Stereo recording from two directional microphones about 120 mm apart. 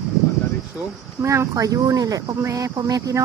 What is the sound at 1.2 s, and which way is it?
Speech, 25° right (ahead or behind).